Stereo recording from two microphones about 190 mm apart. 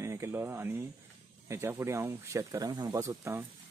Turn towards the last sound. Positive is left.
turn(degrees=-15)  # may be behind; listen again after turning